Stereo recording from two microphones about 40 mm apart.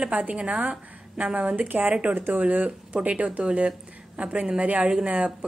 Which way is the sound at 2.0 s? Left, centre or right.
Right.